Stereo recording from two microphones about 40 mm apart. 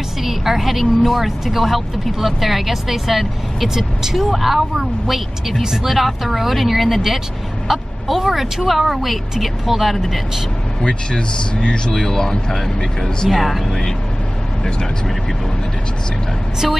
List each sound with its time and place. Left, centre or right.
0.2 s a woman's voice: centre
10.8 s speech: left
13.3 s a woman's voice: centre